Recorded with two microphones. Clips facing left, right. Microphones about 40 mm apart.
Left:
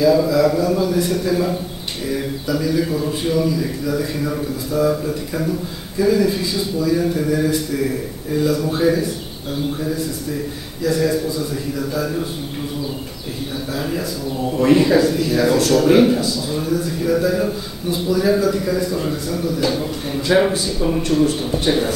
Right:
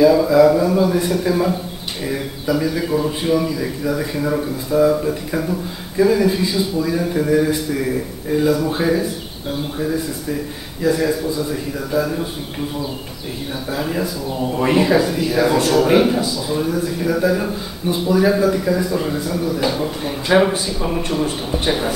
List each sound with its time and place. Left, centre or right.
0.0 s speech: centre
10.8 s speech: centre
13.7 s speech: centre